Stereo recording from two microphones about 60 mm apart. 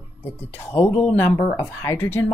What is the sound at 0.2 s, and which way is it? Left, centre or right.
Speech, left.